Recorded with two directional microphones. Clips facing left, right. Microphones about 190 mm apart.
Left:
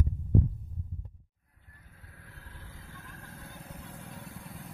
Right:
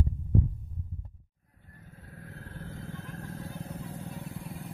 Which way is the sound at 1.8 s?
45° right (ahead or behind).